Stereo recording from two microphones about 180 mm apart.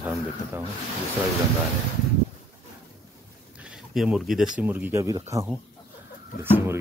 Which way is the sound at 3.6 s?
5° right (ahead or behind).